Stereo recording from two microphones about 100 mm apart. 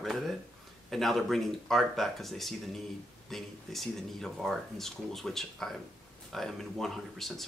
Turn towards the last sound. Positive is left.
turn(degrees=5)  # may be behind; listen again after turning